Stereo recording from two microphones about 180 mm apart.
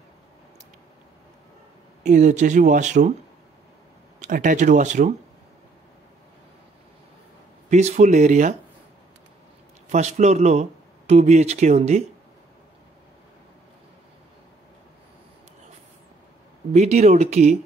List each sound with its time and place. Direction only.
2.0 s speech: 45° right (ahead or behind)
4.2 s speech: 45° right (ahead or behind)
7.7 s speech: 40° right (ahead or behind)
9.8 s speech: 40° right (ahead or behind)
16.7 s speech: 35° right (ahead or behind)